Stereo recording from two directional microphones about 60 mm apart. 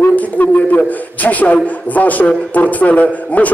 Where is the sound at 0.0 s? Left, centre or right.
Left.